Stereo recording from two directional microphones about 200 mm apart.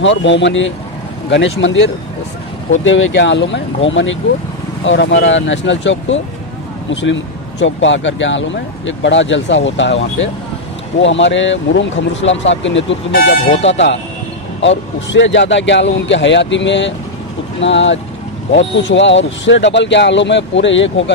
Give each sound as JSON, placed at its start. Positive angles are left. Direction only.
{"t": 0.0, "sound": "speech", "side_deg": 65}